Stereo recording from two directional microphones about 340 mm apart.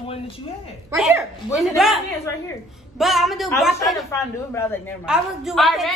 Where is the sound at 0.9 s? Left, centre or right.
Centre.